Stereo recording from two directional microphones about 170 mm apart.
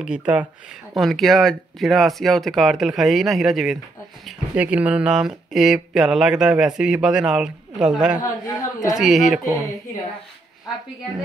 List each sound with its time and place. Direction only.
0.0 s speech: 5° right (ahead or behind)
8.2 s a man's voice: 20° left (ahead or behind)
8.9 s speech: centre (ahead or behind)
9.4 s a woman's voice: 20° right (ahead or behind)